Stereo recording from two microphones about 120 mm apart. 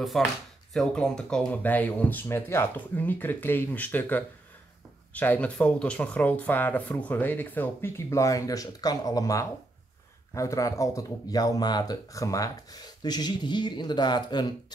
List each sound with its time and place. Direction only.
0.0 s speech: centre (ahead or behind); by 14.5 s 35° left (ahead or behind)